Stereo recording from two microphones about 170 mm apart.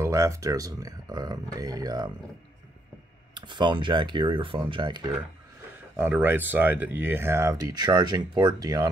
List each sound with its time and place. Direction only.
0.0 s speech: 15° right (ahead or behind)
3.3 s speech: 25° right (ahead or behind)
5.9 s speech: 10° right (ahead or behind)